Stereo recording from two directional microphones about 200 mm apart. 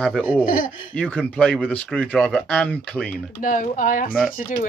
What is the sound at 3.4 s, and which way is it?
Speech, 40° left (ahead or behind).